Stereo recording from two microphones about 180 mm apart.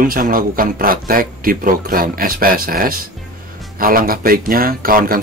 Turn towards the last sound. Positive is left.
turn(degrees=-50)  # may be behind; listen again after turning